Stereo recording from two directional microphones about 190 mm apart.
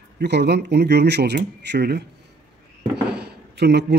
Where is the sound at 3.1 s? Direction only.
60° right (ahead or behind).